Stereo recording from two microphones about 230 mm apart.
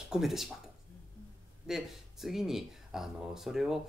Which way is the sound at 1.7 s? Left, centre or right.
Centre.